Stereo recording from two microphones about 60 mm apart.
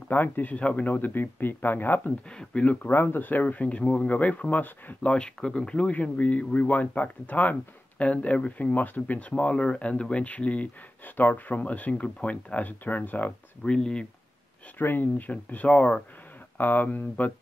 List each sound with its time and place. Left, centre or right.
0.1 s speech: left
2.2 s speech: centre
2.9 s speech: left
5.0 s speech: centre
13.7 s speech: centre
14.8 s speech: left
16.5 s speech: left